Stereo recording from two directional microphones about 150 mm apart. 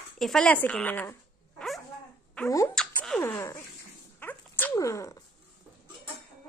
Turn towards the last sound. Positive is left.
turn(degrees=20)  # may be behind; listen again after turning